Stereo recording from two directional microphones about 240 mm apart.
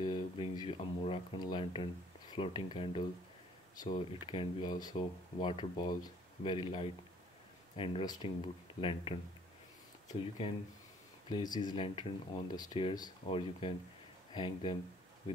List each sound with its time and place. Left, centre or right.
0.0 s speech: centre
11.2 s speech: centre